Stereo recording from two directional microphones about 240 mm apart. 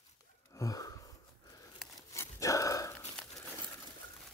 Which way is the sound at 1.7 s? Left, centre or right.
Centre.